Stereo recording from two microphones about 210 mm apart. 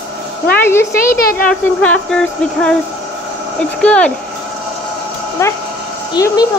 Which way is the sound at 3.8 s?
5° left (ahead or behind).